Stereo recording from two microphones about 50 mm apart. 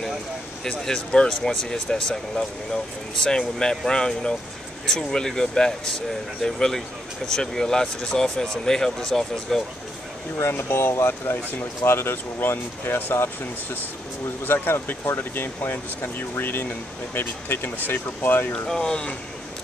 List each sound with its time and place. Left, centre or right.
0.7 s speech: centre
10.3 s speech: left
18.7 s speech: centre